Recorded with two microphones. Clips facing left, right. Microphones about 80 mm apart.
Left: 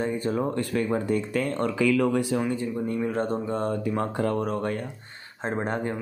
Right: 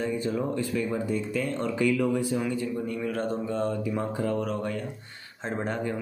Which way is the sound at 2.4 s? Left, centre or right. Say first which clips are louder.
Left 2 dB; left.